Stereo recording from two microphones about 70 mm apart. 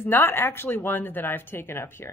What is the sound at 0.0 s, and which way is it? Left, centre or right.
Speech, left.